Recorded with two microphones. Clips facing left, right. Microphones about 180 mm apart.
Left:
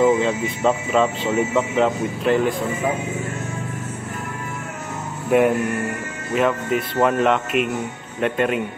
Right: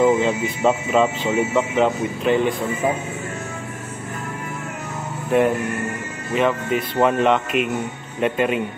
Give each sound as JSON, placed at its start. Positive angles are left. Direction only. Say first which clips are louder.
{"t": 0.0, "sound": "speech", "louder": "even", "side_deg": 0}
{"t": 6.3, "sound": "speech", "louder": "even", "side_deg": 0}